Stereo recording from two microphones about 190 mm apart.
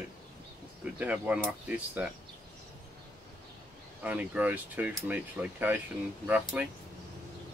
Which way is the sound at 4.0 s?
10° right (ahead or behind).